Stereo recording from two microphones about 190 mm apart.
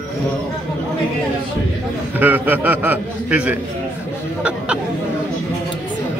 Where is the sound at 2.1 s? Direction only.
10° right (ahead or behind).